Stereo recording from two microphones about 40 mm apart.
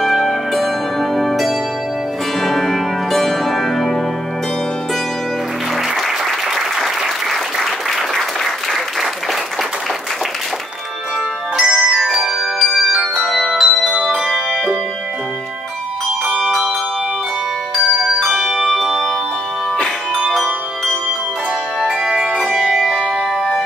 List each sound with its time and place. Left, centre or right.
0.0 s zither: centre
2.4 s music: centre
5.9 s applause: centre
11.5 s music: right
12.7 s music: centre
13.4 s bell: centre
17.7 s music: centre
18.7 s music: centre
21.8 s music: centre
22.6 s music: centre
23.0 s music: centre